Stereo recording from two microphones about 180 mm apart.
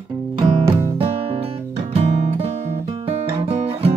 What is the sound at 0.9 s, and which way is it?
Music, 30° right (ahead or behind).